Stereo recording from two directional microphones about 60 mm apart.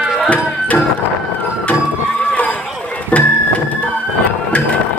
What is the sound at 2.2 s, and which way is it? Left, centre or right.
Horse, left.